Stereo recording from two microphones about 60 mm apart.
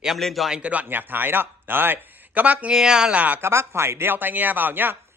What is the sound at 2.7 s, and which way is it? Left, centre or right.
Speech, centre.